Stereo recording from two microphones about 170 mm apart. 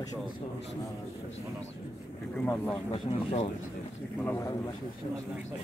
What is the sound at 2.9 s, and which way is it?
Speech, 35° left (ahead or behind).